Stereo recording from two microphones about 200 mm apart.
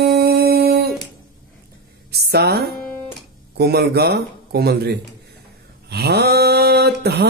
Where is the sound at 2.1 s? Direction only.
55° right (ahead or behind).